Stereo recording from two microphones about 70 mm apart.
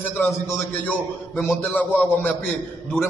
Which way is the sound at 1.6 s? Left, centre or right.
Left.